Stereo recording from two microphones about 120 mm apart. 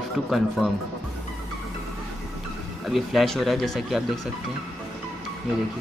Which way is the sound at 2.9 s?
Centre (ahead or behind).